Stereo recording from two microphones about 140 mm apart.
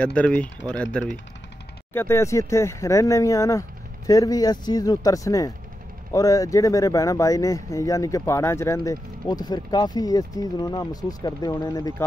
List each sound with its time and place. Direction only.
0.0 s speech: 10° left (ahead or behind)
2.0 s speech: 20° left (ahead or behind)